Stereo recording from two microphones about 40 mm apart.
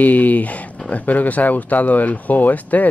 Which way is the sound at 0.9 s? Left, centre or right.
Left.